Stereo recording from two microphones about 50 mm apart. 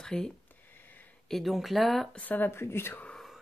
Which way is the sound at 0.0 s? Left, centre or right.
Centre.